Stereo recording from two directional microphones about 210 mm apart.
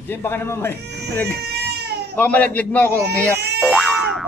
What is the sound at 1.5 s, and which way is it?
Baby cry, 50° right (ahead or behind).